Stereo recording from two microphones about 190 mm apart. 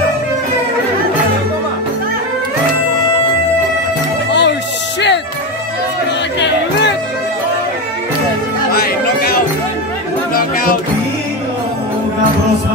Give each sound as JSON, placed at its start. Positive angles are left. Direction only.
{"t": 4.3, "sound": "music", "side_deg": 65}
{"t": 8.7, "sound": "chatter", "side_deg": 50}